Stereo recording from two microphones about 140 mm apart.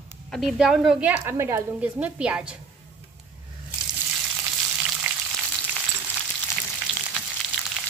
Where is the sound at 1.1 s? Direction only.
20° right (ahead or behind).